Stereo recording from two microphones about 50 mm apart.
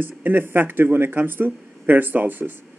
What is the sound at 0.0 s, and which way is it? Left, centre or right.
A man's voice, right.